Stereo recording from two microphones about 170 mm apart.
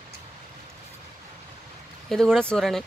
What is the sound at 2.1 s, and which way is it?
Speech, 5° left (ahead or behind).